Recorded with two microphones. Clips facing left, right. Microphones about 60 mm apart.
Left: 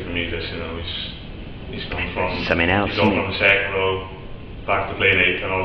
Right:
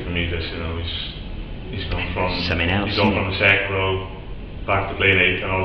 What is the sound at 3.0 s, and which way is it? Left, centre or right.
Speech, centre.